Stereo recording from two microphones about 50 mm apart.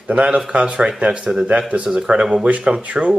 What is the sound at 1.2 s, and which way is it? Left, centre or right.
Speech, centre.